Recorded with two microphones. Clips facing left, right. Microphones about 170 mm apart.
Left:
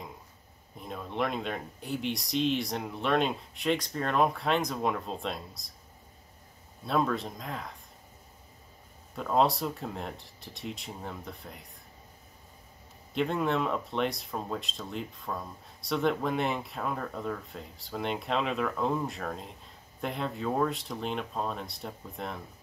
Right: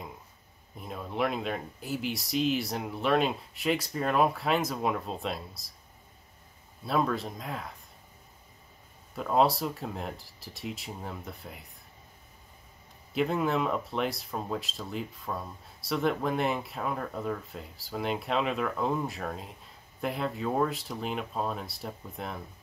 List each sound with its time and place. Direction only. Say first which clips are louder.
0.7 s speech: right 1 dB; 5° right (ahead or behind)
6.9 s speech: even; centre (ahead or behind)
9.1 s speech: right 1 dB; 5° right (ahead or behind)
13.1 s speech: right 1 dB; 5° right (ahead or behind)